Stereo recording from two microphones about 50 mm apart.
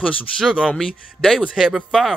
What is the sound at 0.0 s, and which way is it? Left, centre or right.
Speech, left.